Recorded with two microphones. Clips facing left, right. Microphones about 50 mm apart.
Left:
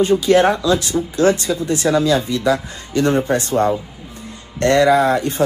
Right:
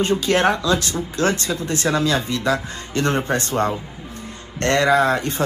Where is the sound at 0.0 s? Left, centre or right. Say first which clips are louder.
Left 5 dB; right.